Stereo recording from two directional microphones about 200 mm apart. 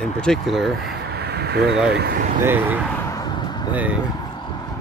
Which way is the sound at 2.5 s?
10° right (ahead or behind).